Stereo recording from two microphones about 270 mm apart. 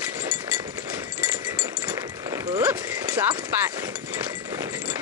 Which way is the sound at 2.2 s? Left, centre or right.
Centre.